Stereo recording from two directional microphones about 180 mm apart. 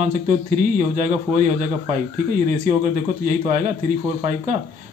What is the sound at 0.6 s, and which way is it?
Speech, 45° right (ahead or behind).